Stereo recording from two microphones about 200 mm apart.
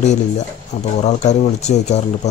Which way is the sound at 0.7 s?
35° left (ahead or behind).